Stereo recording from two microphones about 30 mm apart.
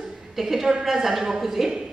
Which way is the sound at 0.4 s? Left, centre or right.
Centre.